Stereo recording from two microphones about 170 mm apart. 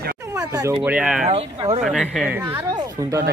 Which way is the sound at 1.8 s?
Centre (ahead or behind).